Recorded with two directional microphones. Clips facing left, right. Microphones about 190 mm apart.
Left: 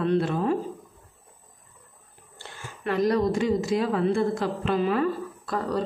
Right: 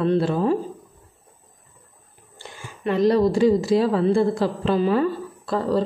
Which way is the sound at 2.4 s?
25° right (ahead or behind).